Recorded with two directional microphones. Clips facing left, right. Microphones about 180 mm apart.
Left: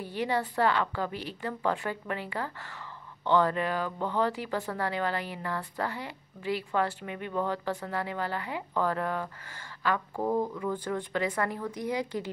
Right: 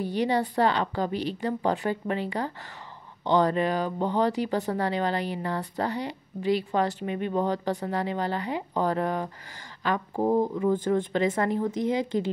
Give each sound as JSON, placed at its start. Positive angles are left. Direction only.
{"t": 0.2, "sound": "a woman's voice", "side_deg": -20}
{"t": 9.9, "sound": "a woman's voice", "side_deg": -30}